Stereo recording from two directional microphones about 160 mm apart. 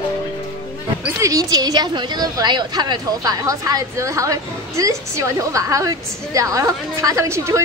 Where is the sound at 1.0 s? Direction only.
20° right (ahead or behind).